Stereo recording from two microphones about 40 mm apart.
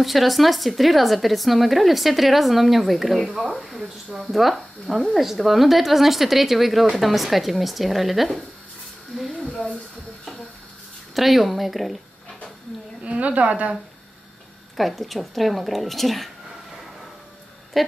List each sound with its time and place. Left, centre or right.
0.0 s speech: centre
9.1 s a sound: centre
11.1 s speech: centre
13.2 s a woman's voice: right
14.8 s speech: centre
17.8 s a woman's voice: centre